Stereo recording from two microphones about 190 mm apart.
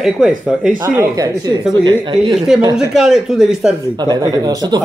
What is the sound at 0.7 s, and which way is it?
Speech, 15° right (ahead or behind).